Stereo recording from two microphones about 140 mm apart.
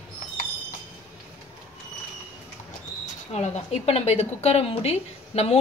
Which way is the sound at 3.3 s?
50° left (ahead or behind).